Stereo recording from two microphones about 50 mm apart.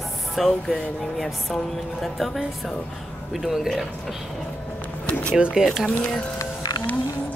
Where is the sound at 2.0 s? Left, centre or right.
Centre.